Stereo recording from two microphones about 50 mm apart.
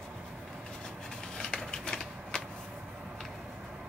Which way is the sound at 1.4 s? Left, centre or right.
Centre.